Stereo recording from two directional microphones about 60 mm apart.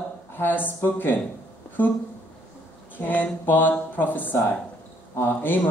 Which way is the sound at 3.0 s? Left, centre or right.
Left.